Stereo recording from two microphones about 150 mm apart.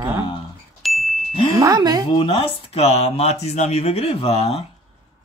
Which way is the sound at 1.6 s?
25° right (ahead or behind).